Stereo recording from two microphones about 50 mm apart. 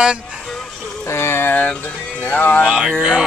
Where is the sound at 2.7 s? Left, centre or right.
Centre.